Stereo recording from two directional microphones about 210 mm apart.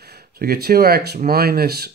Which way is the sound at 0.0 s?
50° right (ahead or behind).